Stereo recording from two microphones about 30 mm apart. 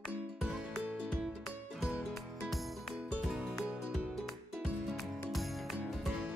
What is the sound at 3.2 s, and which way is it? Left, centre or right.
Music, centre.